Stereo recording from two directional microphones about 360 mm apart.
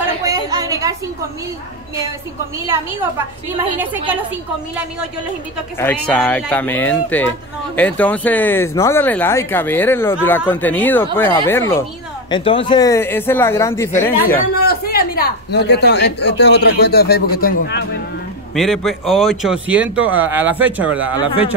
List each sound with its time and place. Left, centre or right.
0.3 s a sound: centre
2.6 s a woman's voice: centre
5.8 s speech: centre
14.6 s speech: left
18.5 s speech: centre